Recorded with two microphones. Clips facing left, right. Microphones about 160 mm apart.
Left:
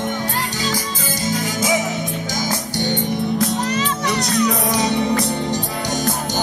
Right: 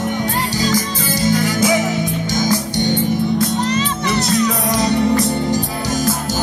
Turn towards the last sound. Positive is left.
turn(degrees=0)  # may be behind; listen again after turning